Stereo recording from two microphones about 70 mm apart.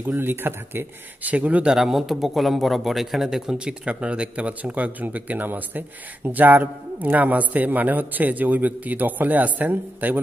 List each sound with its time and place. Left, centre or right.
0.0 s speech: right